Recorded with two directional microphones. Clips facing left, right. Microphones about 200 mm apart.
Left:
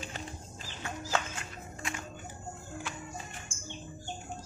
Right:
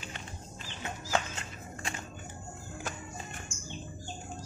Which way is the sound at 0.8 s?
25° right (ahead or behind).